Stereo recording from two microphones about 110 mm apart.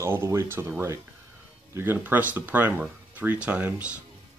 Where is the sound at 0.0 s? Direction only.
25° right (ahead or behind).